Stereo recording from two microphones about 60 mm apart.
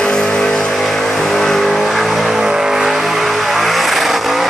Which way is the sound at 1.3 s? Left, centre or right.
Centre.